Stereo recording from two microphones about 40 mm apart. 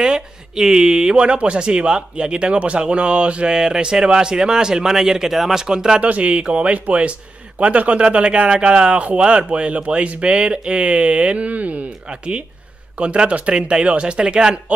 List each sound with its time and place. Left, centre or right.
0.0 s speech: centre; by 3.4 s right
3.4 s speech: centre
6.0 s speech: right